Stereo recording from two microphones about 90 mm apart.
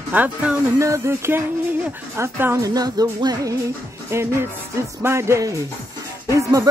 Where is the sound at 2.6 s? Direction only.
45° right (ahead or behind).